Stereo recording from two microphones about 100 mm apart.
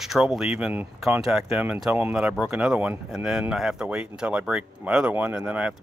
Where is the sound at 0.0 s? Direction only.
Centre (ahead or behind); by 2.1 s 20° right (ahead or behind).